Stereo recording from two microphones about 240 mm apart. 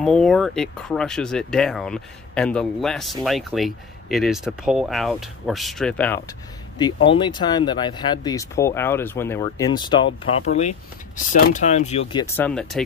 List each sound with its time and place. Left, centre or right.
0.0 s speech: centre
7.1 s speech: centre
12.1 s speech: centre
12.4 s speech: centre